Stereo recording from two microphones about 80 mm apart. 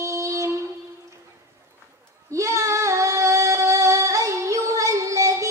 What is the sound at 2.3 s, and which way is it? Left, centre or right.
Singing, right.